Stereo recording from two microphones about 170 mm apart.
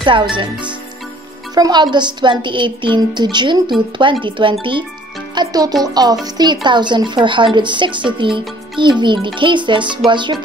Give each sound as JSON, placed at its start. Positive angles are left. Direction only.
{"t": 0.0, "sound": "speech", "side_deg": -30}
{"t": 1.5, "sound": "a child's voice", "side_deg": -25}